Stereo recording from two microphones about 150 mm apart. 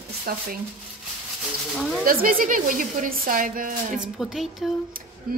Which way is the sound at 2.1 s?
70° right (ahead or behind).